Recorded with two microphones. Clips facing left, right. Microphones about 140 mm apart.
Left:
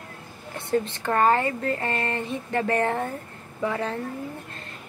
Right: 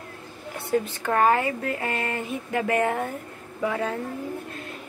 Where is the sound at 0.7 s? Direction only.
5° right (ahead or behind).